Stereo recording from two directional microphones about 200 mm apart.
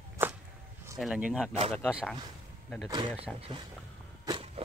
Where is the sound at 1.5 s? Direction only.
30° right (ahead or behind).